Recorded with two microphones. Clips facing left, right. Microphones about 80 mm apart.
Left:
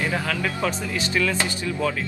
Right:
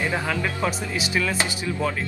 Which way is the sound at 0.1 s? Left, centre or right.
Centre.